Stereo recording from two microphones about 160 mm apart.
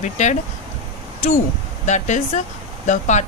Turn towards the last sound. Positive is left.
turn(degrees=50)  # may be behind; listen again after turning